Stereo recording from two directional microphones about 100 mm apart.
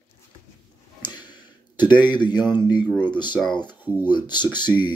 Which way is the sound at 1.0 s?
45° left (ahead or behind).